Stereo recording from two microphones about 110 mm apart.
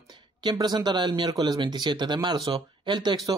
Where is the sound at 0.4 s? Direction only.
40° right (ahead or behind).